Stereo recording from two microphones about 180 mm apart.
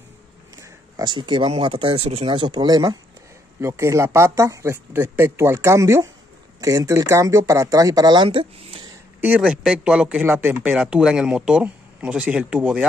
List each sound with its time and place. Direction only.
0.6 s speech: 20° right (ahead or behind)
9.2 s speech: 10° right (ahead or behind)